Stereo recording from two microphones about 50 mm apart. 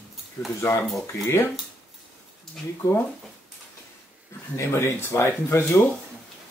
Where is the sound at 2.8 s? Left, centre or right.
Left.